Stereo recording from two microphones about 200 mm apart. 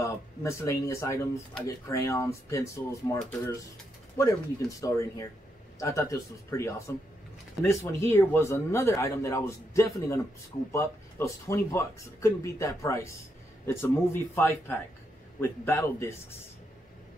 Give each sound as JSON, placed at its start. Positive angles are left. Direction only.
{"t": 0.0, "sound": "a man's voice", "side_deg": 15}